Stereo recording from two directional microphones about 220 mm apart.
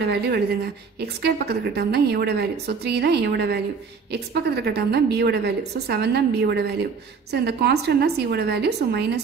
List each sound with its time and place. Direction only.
0.0 s a woman's voice: 50° right (ahead or behind)